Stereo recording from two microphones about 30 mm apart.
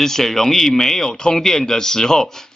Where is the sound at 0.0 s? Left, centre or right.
Centre.